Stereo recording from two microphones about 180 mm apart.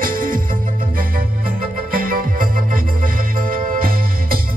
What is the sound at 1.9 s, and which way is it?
Music, 50° right (ahead or behind).